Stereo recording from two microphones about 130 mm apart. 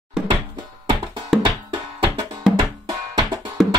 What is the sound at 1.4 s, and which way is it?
Music, 35° right (ahead or behind).